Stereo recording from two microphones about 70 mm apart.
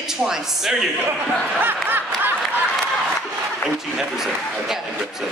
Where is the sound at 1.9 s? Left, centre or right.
Right.